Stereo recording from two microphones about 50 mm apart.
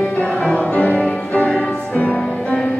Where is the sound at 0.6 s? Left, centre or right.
Left.